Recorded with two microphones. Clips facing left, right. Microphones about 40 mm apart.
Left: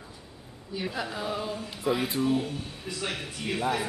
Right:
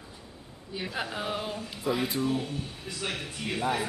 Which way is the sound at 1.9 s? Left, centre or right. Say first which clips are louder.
Left 2 dB; centre.